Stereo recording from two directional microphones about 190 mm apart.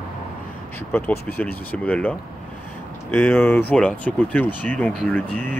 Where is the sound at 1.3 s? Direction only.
10° left (ahead or behind).